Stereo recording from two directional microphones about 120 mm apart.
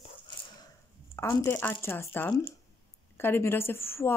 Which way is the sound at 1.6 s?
20° left (ahead or behind).